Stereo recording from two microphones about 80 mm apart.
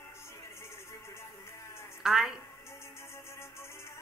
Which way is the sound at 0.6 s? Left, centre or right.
Left.